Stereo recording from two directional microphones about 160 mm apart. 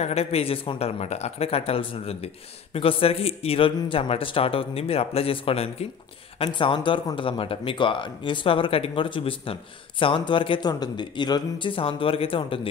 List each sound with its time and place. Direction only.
0.0 s speech: 40° left (ahead or behind)